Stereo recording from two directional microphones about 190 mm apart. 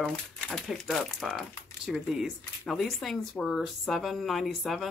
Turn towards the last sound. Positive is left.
turn(degrees=0)  # may be behind; listen again after turning